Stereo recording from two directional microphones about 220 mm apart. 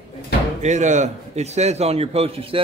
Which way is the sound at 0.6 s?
35° right (ahead or behind).